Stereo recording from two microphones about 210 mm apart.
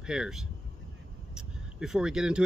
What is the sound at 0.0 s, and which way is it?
Speech, 5° right (ahead or behind).